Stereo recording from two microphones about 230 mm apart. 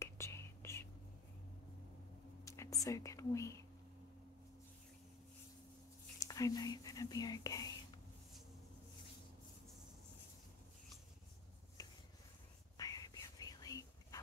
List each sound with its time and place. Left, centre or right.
0.0 s whispering: centre
2.4 s whispering: centre
2.8 s speech: centre
6.1 s speech: centre
11.8 s a sound: centre
12.7 s whispering: centre